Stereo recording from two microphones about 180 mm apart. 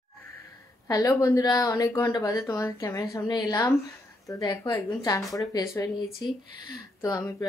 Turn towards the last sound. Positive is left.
turn(degrees=20)  # may be behind; listen again after turning